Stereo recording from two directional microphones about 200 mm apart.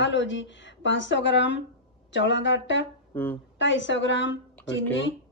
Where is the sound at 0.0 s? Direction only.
65° left (ahead or behind).